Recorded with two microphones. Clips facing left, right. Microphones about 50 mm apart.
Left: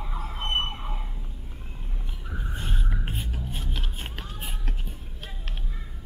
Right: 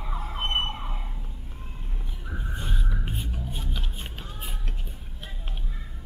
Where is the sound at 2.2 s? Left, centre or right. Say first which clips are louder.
Even; centre.